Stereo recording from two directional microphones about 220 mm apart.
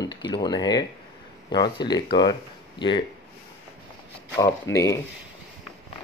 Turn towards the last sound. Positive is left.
turn(degrees=15)  # may be behind; listen again after turning